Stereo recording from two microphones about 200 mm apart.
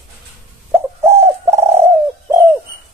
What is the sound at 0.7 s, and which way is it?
Bird, 10° right (ahead or behind).